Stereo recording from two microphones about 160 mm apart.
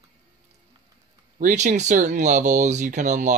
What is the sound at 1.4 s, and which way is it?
Speech, 50° right (ahead or behind).